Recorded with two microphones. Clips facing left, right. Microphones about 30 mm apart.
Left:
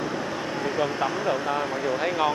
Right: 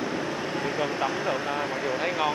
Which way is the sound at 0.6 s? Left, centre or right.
Centre.